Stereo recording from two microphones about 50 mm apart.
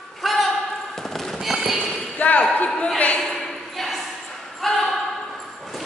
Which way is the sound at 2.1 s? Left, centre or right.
Left.